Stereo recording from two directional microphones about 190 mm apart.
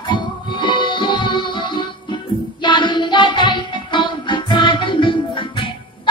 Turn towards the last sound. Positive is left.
turn(degrees=25)  # may be behind; listen again after turning